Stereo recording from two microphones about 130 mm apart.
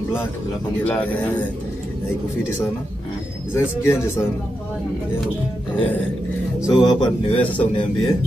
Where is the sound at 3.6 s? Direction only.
20° left (ahead or behind).